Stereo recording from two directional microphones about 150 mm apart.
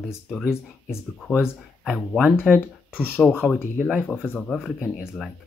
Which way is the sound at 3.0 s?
15° left (ahead or behind).